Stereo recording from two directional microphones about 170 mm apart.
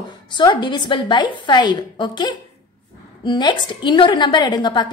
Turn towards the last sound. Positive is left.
turn(degrees=25)  # may be behind; listen again after turning